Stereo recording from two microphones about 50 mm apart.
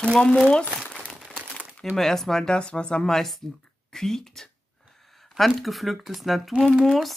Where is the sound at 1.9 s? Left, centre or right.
Centre.